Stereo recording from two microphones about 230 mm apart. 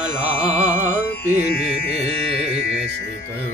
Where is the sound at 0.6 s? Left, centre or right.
Centre.